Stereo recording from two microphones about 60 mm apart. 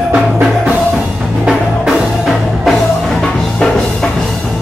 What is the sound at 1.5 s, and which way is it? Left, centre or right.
Music, centre.